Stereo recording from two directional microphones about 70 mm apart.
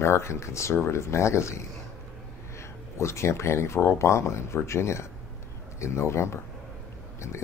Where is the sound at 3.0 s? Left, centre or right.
Left.